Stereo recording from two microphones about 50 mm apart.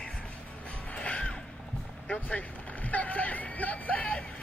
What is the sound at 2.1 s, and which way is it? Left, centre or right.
Speech, left.